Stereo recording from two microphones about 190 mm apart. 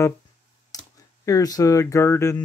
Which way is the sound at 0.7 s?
20° left (ahead or behind).